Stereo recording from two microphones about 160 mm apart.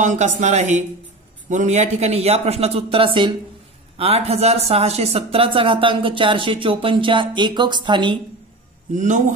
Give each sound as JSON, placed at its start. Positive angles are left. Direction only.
{"t": 0.0, "sound": "speech", "side_deg": -50}
{"t": 8.9, "sound": "speech", "side_deg": -50}